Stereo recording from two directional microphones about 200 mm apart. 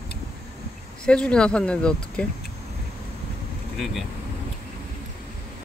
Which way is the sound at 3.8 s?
Centre (ahead or behind).